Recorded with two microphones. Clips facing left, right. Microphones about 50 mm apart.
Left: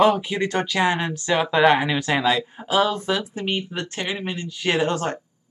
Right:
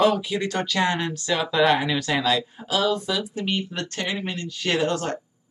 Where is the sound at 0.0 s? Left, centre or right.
Left.